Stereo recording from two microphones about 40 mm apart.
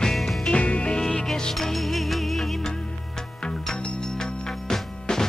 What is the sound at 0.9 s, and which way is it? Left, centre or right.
Music, centre.